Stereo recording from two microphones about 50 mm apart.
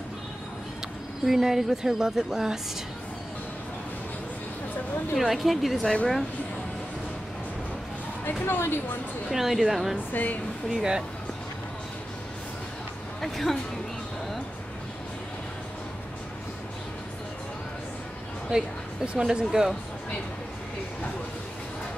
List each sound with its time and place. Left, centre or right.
1.2 s a woman's voice: centre
5.2 s speech: centre
8.5 s a woman's voice: left
9.3 s a woman's voice: centre
9.9 s speech: left
10.7 s a woman's voice: centre
13.2 s speech: centre
18.5 s a woman's voice: centre